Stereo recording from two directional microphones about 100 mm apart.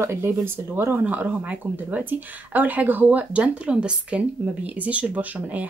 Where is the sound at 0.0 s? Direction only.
25° right (ahead or behind).